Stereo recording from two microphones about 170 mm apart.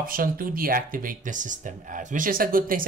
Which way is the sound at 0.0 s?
55° right (ahead or behind).